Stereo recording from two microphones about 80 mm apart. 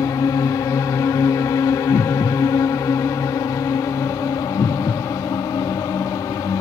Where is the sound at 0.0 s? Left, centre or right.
Left.